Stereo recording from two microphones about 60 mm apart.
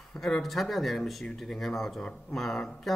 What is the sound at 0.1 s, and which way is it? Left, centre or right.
Speech, centre.